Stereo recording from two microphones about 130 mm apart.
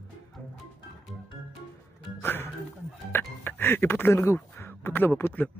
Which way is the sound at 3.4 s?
15° left (ahead or behind).